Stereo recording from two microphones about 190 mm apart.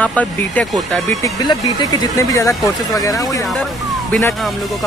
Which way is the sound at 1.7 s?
20° left (ahead or behind).